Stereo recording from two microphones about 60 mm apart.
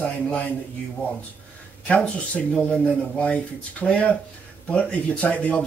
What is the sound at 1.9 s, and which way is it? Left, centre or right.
Speech, left.